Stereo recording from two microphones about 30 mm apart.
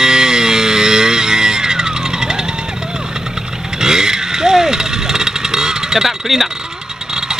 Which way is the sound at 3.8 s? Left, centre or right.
Centre.